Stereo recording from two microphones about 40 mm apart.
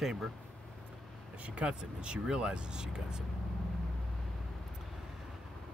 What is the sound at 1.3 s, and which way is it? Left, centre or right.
Speech, right.